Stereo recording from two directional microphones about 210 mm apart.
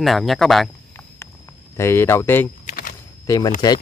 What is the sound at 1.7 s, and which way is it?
Speech, 10° left (ahead or behind).